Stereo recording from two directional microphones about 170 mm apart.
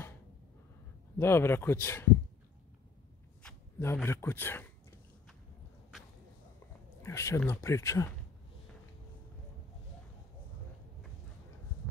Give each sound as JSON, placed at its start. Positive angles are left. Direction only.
{"t": 1.1, "sound": "speech", "side_deg": 15}
{"t": 3.4, "sound": "speech", "side_deg": 15}
{"t": 7.0, "sound": "speech", "side_deg": 15}